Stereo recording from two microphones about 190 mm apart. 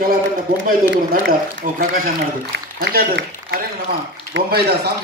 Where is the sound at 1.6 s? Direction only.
40° right (ahead or behind).